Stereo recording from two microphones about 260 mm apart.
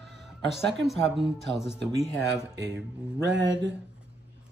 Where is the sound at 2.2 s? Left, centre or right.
Right.